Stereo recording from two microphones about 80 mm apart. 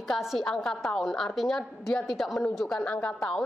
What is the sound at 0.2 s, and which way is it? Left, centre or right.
Speech, centre.